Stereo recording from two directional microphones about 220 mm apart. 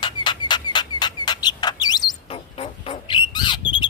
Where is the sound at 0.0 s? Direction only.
20° left (ahead or behind).